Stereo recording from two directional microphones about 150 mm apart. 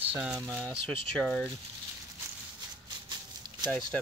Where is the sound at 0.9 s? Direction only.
5° left (ahead or behind).